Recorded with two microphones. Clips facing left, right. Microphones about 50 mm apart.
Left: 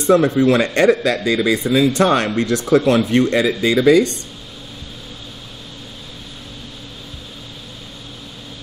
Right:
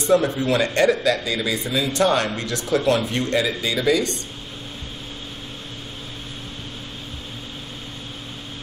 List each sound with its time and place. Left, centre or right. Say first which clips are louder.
0.1 s speech: left 6 dB; left